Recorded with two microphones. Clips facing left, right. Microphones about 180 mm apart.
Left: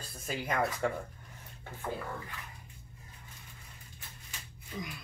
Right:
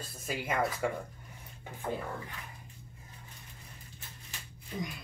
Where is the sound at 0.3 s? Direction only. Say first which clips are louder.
Even; 5° right (ahead or behind).